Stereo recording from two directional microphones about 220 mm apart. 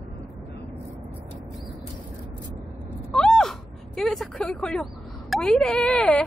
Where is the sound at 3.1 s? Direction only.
Centre (ahead or behind).